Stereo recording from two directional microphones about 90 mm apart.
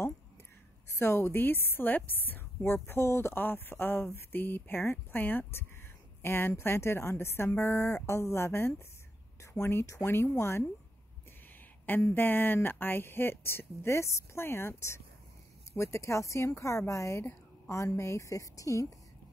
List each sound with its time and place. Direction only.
0.9 s a woman's voice: 30° left (ahead or behind)
11.8 s a woman's voice: 25° left (ahead or behind)